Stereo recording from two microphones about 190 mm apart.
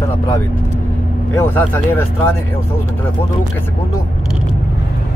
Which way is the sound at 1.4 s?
10° left (ahead or behind).